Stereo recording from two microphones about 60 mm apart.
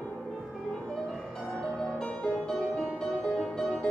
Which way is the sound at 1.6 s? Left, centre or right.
Centre.